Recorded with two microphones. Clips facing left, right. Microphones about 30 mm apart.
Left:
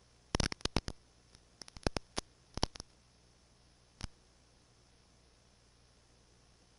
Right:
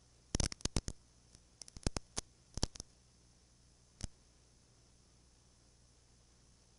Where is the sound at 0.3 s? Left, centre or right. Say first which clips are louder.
Left 5 dB; left.